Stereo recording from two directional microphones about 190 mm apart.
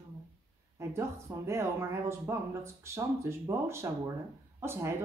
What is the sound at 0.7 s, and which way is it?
Speech, 15° right (ahead or behind).